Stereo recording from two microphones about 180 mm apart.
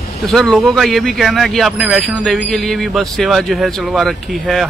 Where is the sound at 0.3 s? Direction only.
Centre (ahead or behind).